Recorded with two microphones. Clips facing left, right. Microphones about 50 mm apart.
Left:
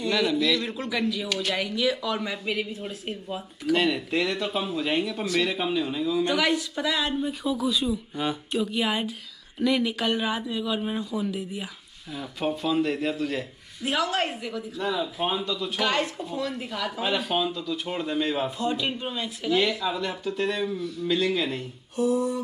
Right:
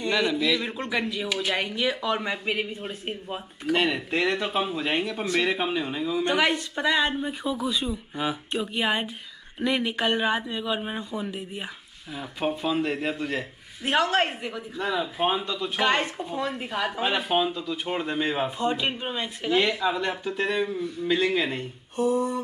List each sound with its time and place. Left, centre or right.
0.0 s speech: centre